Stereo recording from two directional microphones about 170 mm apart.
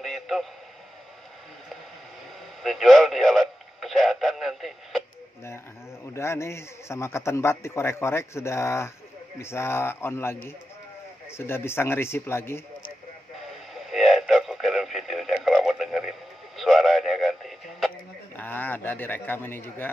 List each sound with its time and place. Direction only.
0.0 s a sound: centre (ahead or behind)
2.6 s speech: centre (ahead or behind)
6.1 s a man's voice: 15° left (ahead or behind)
13.7 s speech: centre (ahead or behind)